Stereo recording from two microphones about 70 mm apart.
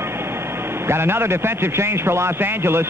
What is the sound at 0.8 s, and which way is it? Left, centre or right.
A man's voice, right.